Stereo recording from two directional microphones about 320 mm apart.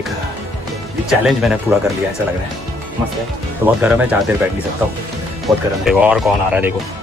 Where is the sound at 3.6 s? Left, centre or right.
Centre.